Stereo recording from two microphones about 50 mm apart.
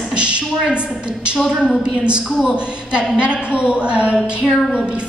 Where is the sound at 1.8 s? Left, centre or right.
Centre.